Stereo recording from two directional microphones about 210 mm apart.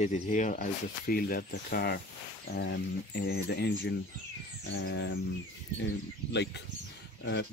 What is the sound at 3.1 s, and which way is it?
Speech, 50° left (ahead or behind).